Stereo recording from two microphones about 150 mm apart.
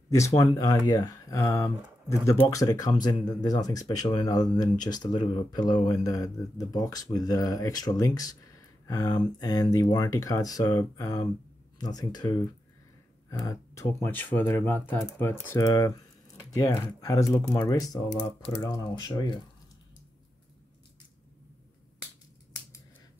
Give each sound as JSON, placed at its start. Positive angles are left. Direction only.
{"t": 0.4, "sound": "speech", "side_deg": 25}
{"t": 13.3, "sound": "speech", "side_deg": 20}
{"t": 22.0, "sound": "finger snapping", "side_deg": 15}